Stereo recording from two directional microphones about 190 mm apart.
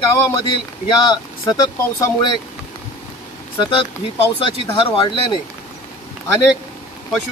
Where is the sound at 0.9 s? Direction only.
20° left (ahead or behind).